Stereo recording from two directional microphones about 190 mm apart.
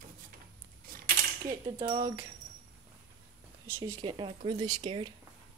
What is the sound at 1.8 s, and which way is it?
Speech, 25° right (ahead or behind).